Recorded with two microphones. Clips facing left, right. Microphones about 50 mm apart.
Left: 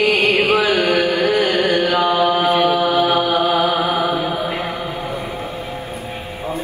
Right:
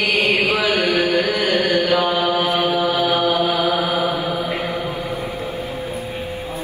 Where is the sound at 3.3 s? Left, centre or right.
Left.